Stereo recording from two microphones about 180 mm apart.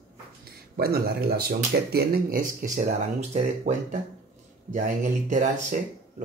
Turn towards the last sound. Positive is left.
turn(degrees=-45)  # may be behind; listen again after turning